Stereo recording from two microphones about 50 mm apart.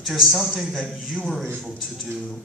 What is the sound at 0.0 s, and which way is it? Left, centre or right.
Speech, centre.